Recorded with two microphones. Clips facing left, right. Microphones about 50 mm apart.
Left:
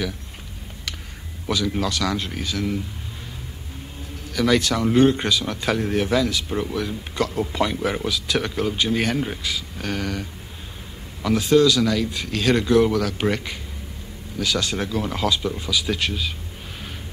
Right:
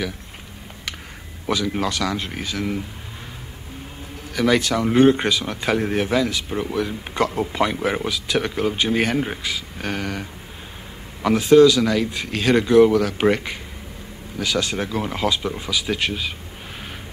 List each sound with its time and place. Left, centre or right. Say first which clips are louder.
1.5 s speech: right 1 dB; right
4.3 s speech: right 1 dB; centre
11.2 s speech: right 4 dB; right